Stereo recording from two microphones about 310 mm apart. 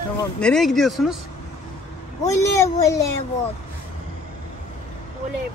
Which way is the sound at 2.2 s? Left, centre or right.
Centre.